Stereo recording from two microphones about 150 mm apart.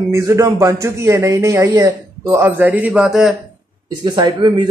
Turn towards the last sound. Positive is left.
turn(degrees=-30)  # may be behind; listen again after turning